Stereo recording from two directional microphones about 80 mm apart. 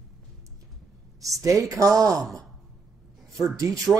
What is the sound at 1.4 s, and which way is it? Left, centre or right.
Speech, right.